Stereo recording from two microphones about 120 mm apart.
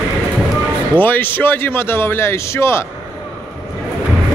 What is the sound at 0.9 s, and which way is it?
A man's voice, 15° left (ahead or behind).